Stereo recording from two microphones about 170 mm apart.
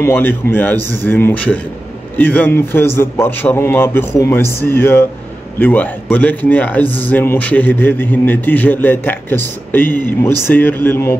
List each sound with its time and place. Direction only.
0.0 s a man's voice: 10° left (ahead or behind)